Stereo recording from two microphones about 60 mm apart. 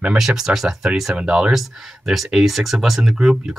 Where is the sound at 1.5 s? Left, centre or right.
Centre.